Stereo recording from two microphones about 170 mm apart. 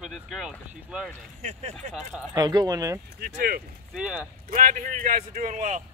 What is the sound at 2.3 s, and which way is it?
Speech, 25° right (ahead or behind).